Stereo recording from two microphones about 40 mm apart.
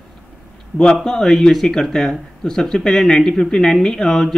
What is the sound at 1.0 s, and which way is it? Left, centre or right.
Speech, centre.